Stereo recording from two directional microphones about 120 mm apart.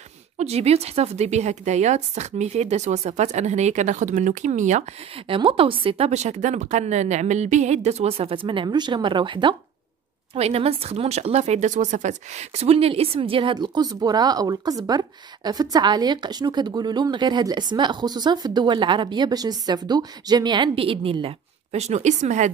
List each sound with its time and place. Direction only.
0.4 s a woman's voice: 60° right (ahead or behind); by 4.8 s 80° right
5.1 s a woman's voice: 50° right (ahead or behind)
10.3 s a woman's voice: 60° right (ahead or behind); by 22.5 s 85° right